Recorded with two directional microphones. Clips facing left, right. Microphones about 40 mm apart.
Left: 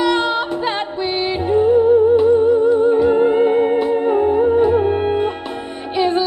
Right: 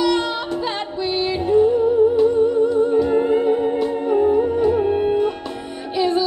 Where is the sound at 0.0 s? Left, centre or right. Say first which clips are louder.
Left 3 dB; left.